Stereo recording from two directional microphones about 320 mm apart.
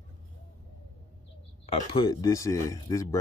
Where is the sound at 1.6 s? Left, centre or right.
Centre.